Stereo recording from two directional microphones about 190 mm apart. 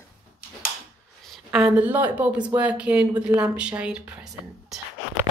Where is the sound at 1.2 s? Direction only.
Centre (ahead or behind).